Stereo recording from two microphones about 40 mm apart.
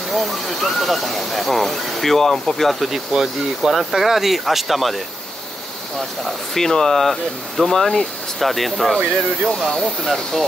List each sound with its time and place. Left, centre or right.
0.1 s speech: centre